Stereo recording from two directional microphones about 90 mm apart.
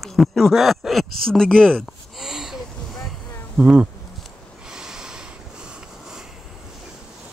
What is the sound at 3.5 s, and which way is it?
Speech, 15° right (ahead or behind).